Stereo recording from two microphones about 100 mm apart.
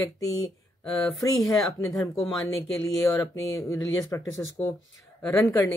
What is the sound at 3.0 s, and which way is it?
Speech, 35° left (ahead or behind).